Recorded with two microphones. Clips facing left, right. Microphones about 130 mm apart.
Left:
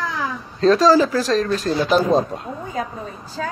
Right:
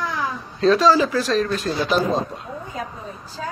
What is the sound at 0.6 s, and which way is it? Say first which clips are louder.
Speech: left 2 dB; 40° left (ahead or behind).